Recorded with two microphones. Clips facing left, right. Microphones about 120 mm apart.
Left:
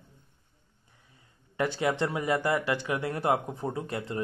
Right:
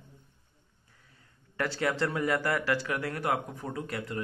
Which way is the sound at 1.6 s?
20° left (ahead or behind).